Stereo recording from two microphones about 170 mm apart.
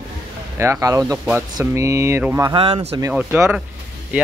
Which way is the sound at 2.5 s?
35° right (ahead or behind).